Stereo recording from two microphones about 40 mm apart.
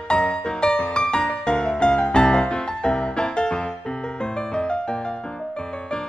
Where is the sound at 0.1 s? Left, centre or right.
Left.